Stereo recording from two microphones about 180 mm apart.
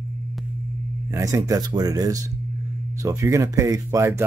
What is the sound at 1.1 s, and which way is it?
Speech, 20° right (ahead or behind).